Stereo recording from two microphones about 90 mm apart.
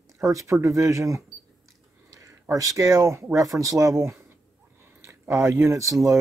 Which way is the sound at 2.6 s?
35° right (ahead or behind).